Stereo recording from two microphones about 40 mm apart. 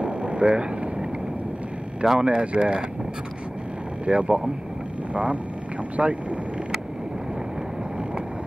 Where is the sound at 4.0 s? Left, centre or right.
Right.